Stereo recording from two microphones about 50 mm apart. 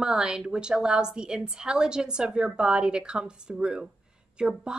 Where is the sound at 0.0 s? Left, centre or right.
Centre.